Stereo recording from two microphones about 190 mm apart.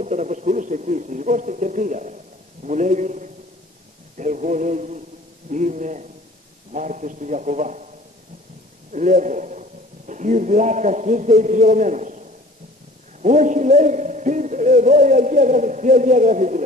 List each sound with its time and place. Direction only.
0.0 s a man's voice: 40° right (ahead or behind)
8.9 s a man's voice: 40° right (ahead or behind)